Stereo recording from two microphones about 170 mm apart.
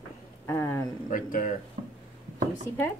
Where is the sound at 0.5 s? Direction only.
15° left (ahead or behind).